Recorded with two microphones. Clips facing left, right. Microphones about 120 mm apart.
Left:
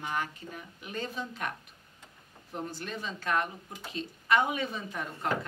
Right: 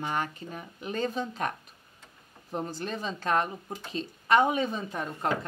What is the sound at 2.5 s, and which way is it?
A woman's voice, 35° right (ahead or behind).